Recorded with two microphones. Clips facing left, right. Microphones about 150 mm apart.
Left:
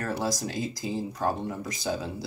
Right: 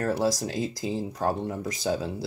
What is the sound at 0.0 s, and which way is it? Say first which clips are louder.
Speech: right 4 dB; 30° right (ahead or behind).